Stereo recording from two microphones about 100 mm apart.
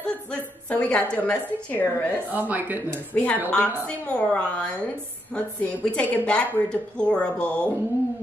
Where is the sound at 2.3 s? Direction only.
20° right (ahead or behind).